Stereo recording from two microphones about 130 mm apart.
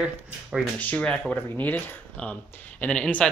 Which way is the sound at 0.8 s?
10° left (ahead or behind).